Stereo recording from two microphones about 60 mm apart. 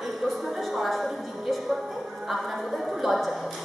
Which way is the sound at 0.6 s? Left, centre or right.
Centre.